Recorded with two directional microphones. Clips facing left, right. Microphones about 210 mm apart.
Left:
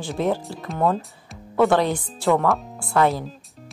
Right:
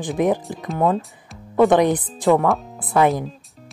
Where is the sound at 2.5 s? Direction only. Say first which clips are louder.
Right 2 dB; centre (ahead or behind).